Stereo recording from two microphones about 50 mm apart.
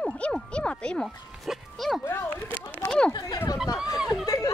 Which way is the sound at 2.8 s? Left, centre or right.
Centre.